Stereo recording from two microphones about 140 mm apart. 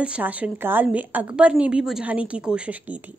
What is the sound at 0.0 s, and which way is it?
A woman's voice, 10° right (ahead or behind).